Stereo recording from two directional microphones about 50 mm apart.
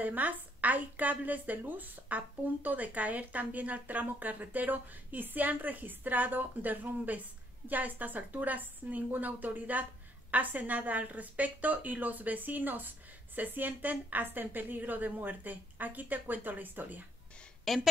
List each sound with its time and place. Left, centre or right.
0.0 s a woman's voice: right
17.7 s speech: centre